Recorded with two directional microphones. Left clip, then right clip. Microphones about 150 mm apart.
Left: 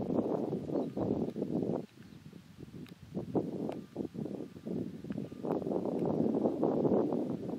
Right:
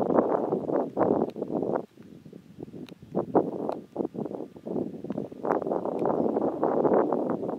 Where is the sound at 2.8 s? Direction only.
45° right (ahead or behind).